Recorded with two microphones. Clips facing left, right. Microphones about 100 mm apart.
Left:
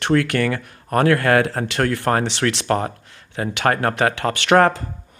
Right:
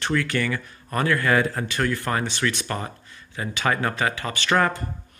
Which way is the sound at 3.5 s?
65° left (ahead or behind).